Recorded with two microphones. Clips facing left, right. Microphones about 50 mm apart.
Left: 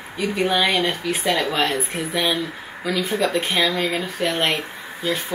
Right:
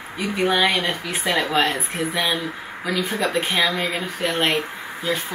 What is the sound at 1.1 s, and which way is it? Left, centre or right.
Speech, right.